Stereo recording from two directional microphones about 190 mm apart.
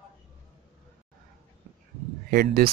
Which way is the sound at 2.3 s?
50° right (ahead or behind).